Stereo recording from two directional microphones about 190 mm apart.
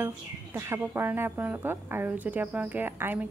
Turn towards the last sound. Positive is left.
turn(degrees=-10)  # may be behind; listen again after turning